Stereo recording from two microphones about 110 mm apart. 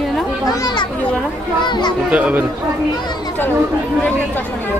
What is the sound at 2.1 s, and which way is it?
Speech, 10° right (ahead or behind).